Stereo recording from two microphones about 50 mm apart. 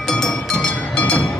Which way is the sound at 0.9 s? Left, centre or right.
Left.